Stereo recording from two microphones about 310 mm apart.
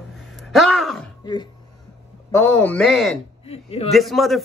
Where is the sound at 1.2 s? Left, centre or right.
Centre.